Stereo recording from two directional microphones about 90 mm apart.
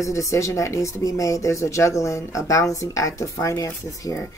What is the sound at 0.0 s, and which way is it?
Speech, 35° left (ahead or behind).